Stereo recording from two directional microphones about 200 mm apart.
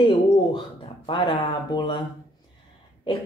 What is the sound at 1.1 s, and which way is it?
Mantra, 20° left (ahead or behind).